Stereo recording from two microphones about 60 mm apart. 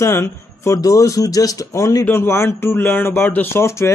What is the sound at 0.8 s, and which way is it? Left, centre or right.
Speech, left.